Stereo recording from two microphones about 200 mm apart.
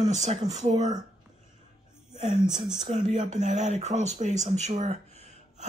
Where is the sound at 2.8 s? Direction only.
35° right (ahead or behind).